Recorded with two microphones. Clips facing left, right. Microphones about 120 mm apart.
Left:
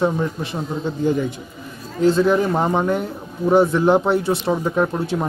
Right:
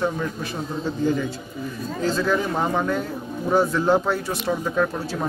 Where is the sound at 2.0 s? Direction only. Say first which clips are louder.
Left 7 dB; 20° left (ahead or behind).